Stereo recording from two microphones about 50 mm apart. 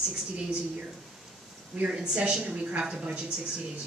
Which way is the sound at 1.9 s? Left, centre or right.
Centre.